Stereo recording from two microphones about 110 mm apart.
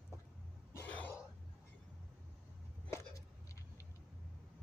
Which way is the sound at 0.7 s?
15° left (ahead or behind).